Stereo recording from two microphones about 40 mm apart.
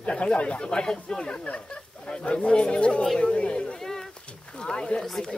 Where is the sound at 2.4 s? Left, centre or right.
Left.